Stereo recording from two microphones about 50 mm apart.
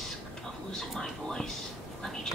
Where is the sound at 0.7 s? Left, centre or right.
Centre.